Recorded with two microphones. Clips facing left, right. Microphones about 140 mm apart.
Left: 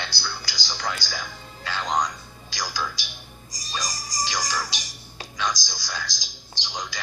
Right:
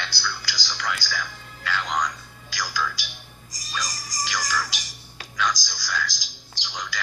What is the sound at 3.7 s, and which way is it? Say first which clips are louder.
Music: left 1 dB; 30° left (ahead or behind).